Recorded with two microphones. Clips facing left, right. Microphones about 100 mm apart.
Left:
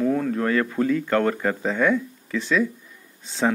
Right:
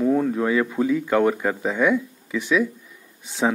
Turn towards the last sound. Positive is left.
turn(degrees=-15)  # may be behind; listen again after turning